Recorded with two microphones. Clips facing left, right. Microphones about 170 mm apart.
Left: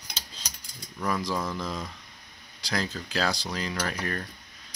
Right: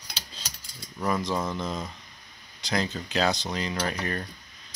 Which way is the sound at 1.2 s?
20° right (ahead or behind).